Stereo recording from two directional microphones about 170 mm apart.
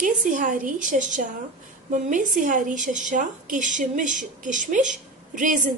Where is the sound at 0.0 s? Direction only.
50° right (ahead or behind).